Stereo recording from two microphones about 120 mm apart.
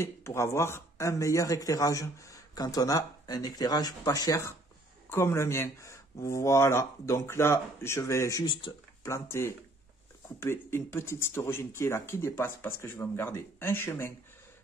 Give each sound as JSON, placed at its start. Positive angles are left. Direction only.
{"t": 0.0, "sound": "speech", "side_deg": 20}